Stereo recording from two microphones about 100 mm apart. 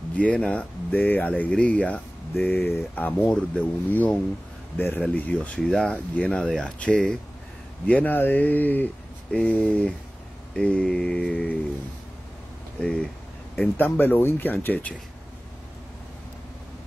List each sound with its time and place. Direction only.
0.2 s speech: 10° left (ahead or behind)
4.7 s speech: 25° left (ahead or behind); by 11.5 s 5° left (ahead or behind)
12.8 s speech: 10° left (ahead or behind)